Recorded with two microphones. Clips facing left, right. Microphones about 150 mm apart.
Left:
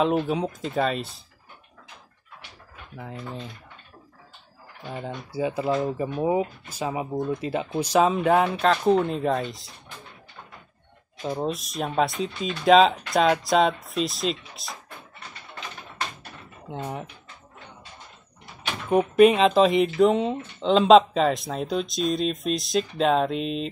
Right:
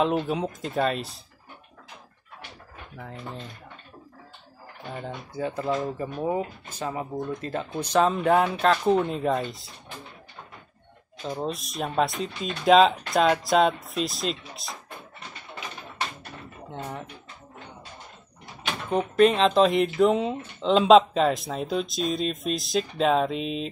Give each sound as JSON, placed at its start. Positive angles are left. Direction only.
{"t": 0.0, "sound": "speech", "side_deg": 0}
{"t": 3.0, "sound": "speech", "side_deg": 5}
{"t": 4.8, "sound": "speech", "side_deg": 10}
{"t": 11.2, "sound": "speech", "side_deg": 5}
{"t": 16.8, "sound": "speech", "side_deg": 25}
{"t": 18.9, "sound": "speech", "side_deg": 10}